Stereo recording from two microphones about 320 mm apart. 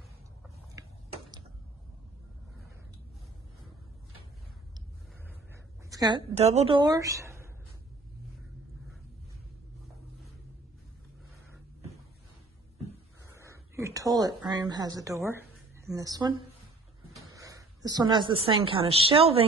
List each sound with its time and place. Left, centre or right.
0.7 s a sound: centre
5.9 s a woman's voice: centre
13.3 s a woman's voice: centre